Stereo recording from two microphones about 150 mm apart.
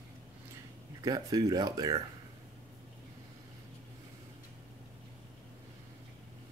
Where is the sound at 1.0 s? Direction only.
25° right (ahead or behind).